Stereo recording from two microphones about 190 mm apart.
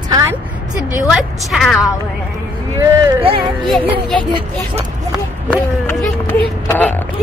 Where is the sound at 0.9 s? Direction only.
Centre (ahead or behind).